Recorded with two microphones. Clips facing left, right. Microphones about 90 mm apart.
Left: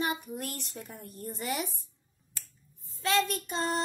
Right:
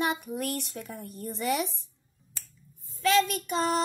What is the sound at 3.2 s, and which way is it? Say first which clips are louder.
Speech: right 4 dB; 75° right (ahead or behind).